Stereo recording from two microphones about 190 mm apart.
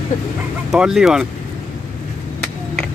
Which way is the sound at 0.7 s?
5° right (ahead or behind).